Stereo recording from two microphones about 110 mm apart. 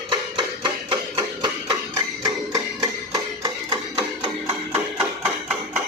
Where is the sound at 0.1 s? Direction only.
45° right (ahead or behind).